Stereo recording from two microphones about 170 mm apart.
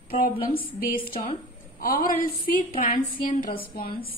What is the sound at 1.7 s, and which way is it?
A woman's voice, 60° left (ahead or behind).